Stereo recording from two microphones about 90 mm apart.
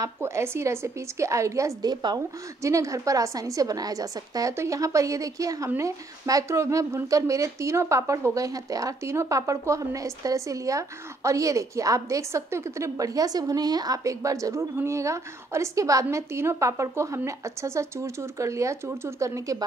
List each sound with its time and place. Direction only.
0.0 s speech: 30° right (ahead or behind); by 2.2 s 45° right (ahead or behind)
2.6 s speech: 35° right (ahead or behind)